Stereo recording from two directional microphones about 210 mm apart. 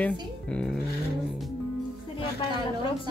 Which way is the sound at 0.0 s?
5° left (ahead or behind).